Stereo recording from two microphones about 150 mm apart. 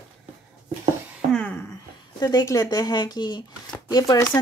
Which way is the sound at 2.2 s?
25° left (ahead or behind).